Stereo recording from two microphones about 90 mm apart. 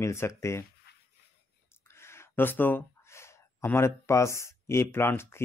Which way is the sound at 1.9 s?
30° left (ahead or behind).